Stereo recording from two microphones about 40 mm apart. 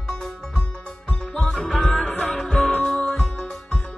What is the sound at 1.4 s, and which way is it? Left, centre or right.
Music, centre.